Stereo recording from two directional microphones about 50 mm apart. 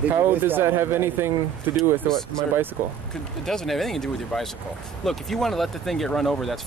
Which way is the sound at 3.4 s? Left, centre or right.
Centre.